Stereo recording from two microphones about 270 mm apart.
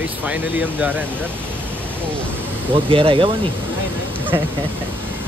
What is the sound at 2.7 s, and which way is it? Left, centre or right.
Speech, centre.